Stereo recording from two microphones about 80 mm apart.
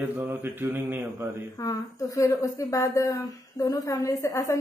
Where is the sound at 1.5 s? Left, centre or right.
Left.